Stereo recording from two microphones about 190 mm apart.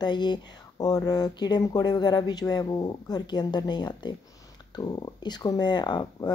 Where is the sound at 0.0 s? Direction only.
25° left (ahead or behind).